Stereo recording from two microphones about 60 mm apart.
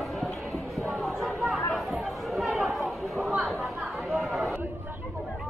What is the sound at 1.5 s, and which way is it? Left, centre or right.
Chatter, centre.